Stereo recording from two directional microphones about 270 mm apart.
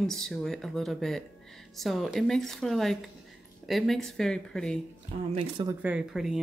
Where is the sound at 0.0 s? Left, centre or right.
Centre.